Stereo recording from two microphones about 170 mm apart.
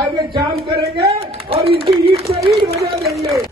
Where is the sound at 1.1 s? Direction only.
35° right (ahead or behind).